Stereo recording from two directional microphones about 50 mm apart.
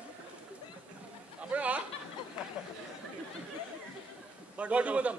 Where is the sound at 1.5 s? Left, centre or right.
Right.